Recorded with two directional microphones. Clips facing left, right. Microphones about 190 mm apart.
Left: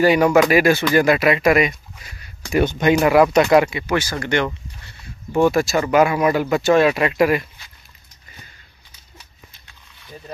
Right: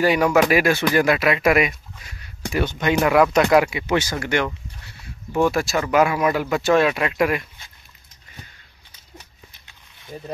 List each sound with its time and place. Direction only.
0.0 s speech: centre (ahead or behind)
2.5 s speech: 15° left (ahead or behind)
3.0 s speech: 5° left (ahead or behind)
3.8 s speech: 20° right (ahead or behind)
4.2 s speech: 5° right (ahead or behind)